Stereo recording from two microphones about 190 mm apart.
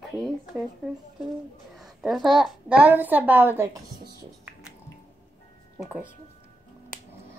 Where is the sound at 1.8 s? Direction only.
Centre (ahead or behind).